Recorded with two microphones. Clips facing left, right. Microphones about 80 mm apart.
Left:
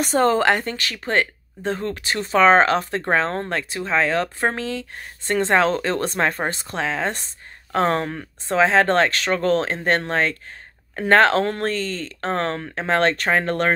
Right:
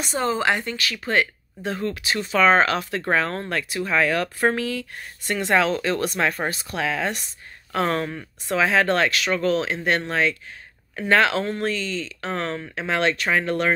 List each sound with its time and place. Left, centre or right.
0.0 s speech: left